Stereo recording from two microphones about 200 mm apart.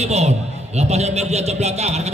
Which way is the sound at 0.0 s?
30° right (ahead or behind).